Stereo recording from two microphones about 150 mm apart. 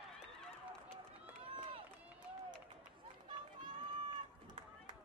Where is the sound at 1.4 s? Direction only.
35° right (ahead or behind).